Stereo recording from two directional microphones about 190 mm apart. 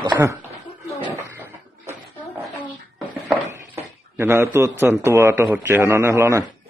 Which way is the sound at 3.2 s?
10° right (ahead or behind).